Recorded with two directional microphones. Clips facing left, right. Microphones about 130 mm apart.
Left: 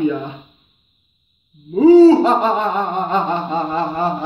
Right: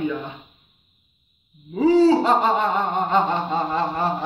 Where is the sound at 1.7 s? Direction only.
20° left (ahead or behind).